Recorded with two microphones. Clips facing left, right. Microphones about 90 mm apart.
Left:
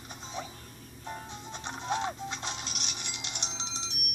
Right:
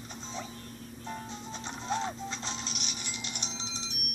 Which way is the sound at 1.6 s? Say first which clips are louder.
Left 1 dB; 55° left (ahead or behind).